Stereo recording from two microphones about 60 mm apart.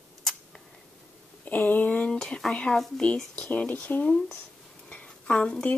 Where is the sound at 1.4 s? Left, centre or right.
Left.